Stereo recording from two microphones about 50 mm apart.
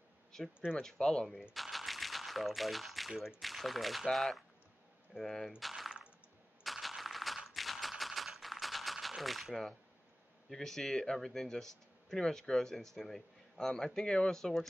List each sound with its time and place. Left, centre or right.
0.3 s speech: centre
1.5 s a sound: centre
3.3 s speech: centre
5.6 s a sound: centre
6.6 s typewriter: centre
10.5 s speech: centre